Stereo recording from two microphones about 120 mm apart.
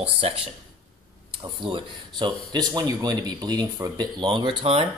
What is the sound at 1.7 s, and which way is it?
Speech, 40° right (ahead or behind).